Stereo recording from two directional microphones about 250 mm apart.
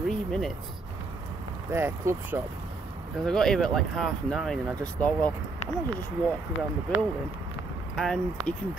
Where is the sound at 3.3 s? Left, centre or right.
Centre.